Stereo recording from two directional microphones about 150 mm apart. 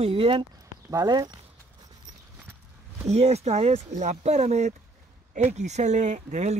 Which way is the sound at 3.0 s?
45° right (ahead or behind).